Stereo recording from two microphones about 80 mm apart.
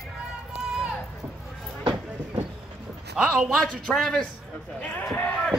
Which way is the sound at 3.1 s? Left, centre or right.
Centre.